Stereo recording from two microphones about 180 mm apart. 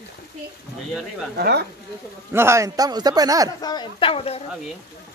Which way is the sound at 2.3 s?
15° right (ahead or behind).